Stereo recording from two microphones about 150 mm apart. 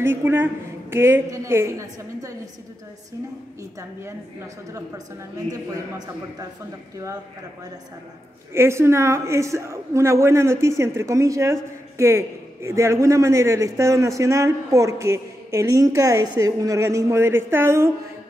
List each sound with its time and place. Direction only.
0.0 s a woman's voice: 15° right (ahead or behind)
5.5 s a man's voice: 25° right (ahead or behind)
8.5 s a man's voice: 20° right (ahead or behind)